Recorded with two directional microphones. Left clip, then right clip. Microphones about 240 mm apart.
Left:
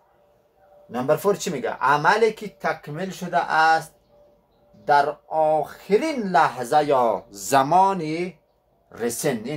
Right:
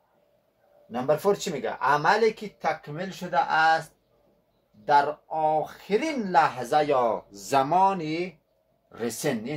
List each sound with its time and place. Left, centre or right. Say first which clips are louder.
0.9 s speech: left 3 dB; centre
4.8 s speech: left 3 dB; centre